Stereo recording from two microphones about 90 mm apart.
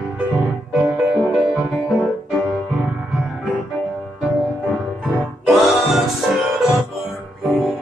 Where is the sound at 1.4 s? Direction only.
5° right (ahead or behind).